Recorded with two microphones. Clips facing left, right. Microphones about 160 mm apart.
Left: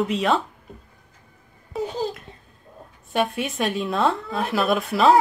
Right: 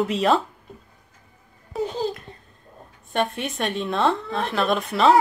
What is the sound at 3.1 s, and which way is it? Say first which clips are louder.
Speech: left 1 dB; centre (ahead or behind).